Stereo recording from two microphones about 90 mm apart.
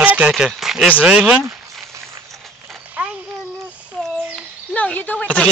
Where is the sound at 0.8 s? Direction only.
15° right (ahead or behind).